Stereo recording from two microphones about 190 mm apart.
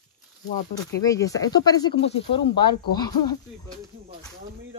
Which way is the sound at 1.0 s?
20° left (ahead or behind).